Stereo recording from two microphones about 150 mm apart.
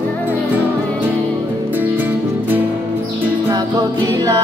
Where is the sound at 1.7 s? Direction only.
10° right (ahead or behind).